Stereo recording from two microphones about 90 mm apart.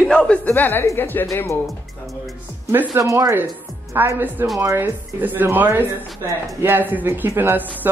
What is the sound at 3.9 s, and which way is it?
Speech, 20° right (ahead or behind).